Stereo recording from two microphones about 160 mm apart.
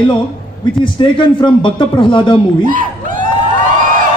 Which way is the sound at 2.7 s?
55° right (ahead or behind).